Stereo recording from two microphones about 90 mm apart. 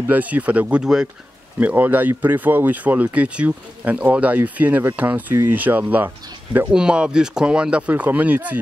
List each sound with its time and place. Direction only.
0.0 s speech: 20° right (ahead or behind)
6.7 s speech: 10° right (ahead or behind)